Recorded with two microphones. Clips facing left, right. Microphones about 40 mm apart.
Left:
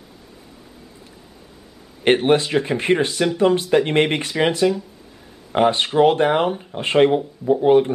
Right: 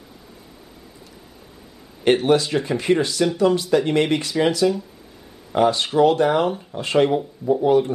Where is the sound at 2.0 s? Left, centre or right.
Left.